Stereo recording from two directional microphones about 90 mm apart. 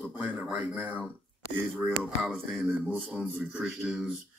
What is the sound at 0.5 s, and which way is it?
Speech, 20° right (ahead or behind).